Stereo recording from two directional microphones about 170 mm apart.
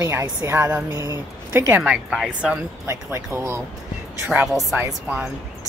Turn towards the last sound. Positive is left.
turn(degrees=-5)  # may be behind; listen again after turning